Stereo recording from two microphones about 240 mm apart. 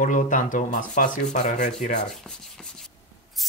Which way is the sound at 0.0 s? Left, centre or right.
Left.